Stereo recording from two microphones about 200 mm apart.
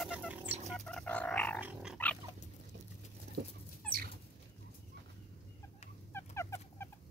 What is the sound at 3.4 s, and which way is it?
Dog, 65° right (ahead or behind).